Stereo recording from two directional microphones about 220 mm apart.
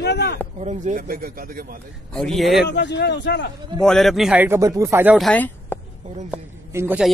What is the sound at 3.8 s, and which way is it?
Speech, centre (ahead or behind).